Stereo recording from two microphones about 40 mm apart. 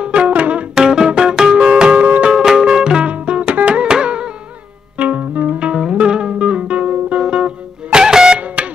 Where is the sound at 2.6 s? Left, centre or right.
Centre.